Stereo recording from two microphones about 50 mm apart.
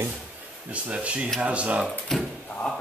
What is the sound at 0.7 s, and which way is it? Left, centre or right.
Speech, right.